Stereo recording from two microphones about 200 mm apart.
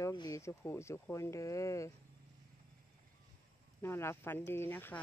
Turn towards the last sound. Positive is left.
turn(degrees=10)  # may be behind; listen again after turning